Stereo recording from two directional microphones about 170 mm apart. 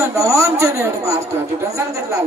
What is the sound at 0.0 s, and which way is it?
Speech, 15° right (ahead or behind).